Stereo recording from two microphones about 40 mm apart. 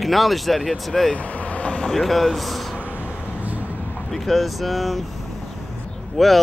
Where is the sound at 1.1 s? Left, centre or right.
Left.